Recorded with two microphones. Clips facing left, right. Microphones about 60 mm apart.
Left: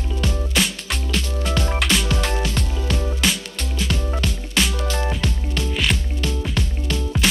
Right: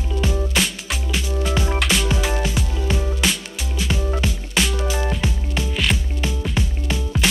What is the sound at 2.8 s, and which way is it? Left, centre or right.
Music, centre.